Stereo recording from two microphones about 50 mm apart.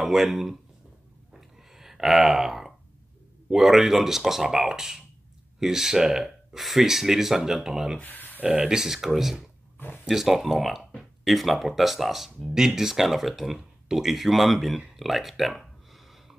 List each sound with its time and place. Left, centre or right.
0.0 s speech: centre
1.3 s a sound: centre
3.4 s speech: centre
8.0 s speech: left
8.4 s speech: right
8.6 s speech: centre